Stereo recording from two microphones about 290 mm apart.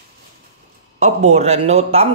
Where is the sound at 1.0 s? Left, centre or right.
Right.